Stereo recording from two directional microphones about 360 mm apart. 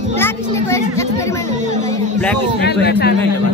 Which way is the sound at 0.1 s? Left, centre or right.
Centre.